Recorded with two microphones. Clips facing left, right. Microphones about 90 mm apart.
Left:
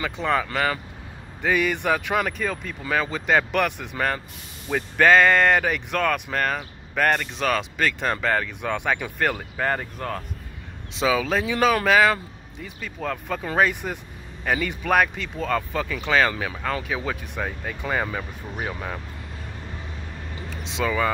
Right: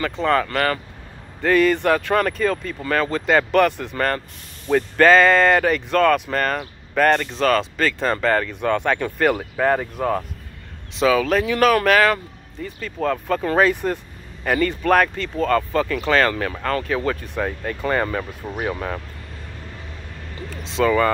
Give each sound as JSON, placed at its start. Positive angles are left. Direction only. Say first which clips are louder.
{"t": 0.0, "sound": "speech", "louder": "right 4 dB", "side_deg": 10}
{"t": 11.0, "sound": "speech", "louder": "right 5 dB", "side_deg": 15}
{"t": 20.8, "sound": "speech", "louder": "right 6 dB", "side_deg": 5}